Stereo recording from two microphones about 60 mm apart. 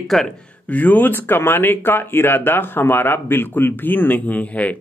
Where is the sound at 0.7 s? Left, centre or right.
Left.